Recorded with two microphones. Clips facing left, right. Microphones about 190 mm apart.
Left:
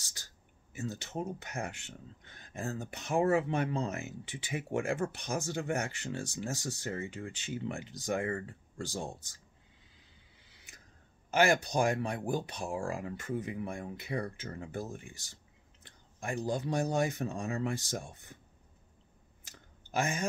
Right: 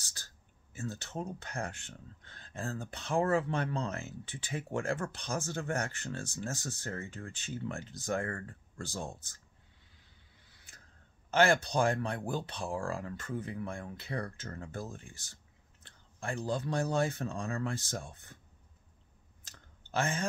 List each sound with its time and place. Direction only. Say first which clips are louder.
0.0 s a sound: even; 15° left (ahead or behind)
0.7 s speech: left 2 dB; 15° left (ahead or behind)
11.2 s speech: even; 10° left (ahead or behind)
19.4 s clicking: left 2 dB; 15° left (ahead or behind)